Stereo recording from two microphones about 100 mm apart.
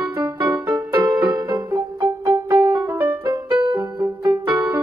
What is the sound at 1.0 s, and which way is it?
Music, 45° right (ahead or behind).